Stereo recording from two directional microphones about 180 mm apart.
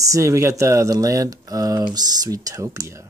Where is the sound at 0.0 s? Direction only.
15° right (ahead or behind).